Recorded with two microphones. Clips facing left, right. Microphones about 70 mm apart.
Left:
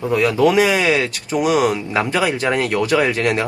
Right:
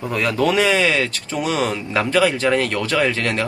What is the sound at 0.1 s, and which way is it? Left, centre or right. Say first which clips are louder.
Speech: left 4 dB; centre.